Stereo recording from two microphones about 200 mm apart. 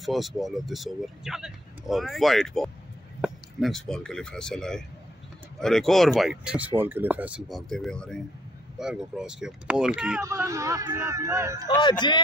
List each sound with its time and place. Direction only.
0.0 s speech: centre (ahead or behind)
10.2 s speech: 15° right (ahead or behind)
11.7 s speech: 20° left (ahead or behind)